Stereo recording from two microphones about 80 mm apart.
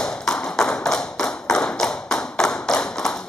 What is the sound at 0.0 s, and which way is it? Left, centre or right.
Tap, centre.